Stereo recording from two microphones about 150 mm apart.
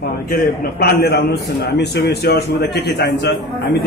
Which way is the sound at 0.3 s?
90° left.